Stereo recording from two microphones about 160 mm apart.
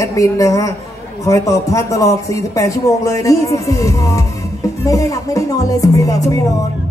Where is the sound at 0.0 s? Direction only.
20° left (ahead or behind).